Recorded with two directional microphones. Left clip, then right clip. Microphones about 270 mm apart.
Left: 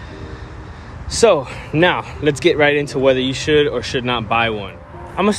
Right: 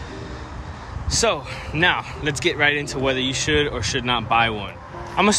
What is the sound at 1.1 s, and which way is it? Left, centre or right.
Speech, centre.